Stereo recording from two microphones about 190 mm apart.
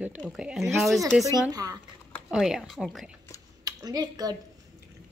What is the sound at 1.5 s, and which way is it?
Speech, 20° right (ahead or behind).